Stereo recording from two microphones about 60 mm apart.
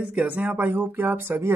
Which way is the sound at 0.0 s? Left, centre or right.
Right.